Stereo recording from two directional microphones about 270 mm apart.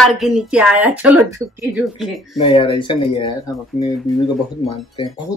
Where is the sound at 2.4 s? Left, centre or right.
Centre.